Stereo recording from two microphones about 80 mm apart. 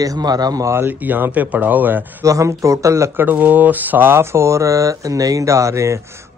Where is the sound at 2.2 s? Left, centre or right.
Right.